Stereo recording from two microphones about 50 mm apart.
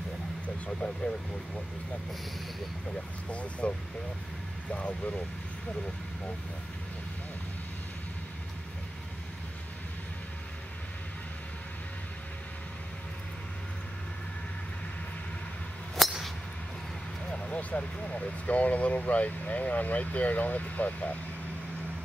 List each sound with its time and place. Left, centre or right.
3.3 s speech: left
4.7 s speech: left
16.0 s a sound: centre
17.3 s speech: left